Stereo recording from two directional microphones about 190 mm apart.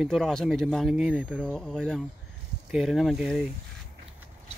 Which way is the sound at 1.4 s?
5° left (ahead or behind).